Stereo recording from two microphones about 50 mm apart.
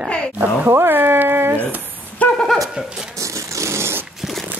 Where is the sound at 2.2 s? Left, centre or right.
Left.